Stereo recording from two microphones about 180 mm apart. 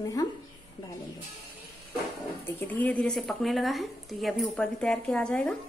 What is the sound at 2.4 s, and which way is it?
A woman's voice, 10° left (ahead or behind).